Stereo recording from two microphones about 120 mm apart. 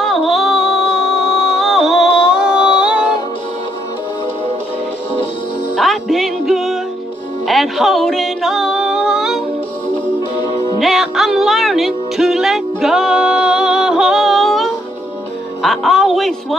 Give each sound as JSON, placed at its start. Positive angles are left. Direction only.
{"t": 0.0, "sound": "music", "side_deg": 0}
{"t": 2.0, "sound": "music", "side_deg": 45}
{"t": 2.4, "sound": "music", "side_deg": -10}
{"t": 5.8, "sound": "music", "side_deg": 0}
{"t": 10.8, "sound": "music", "side_deg": 0}
{"t": 15.6, "sound": "a sound", "side_deg": 0}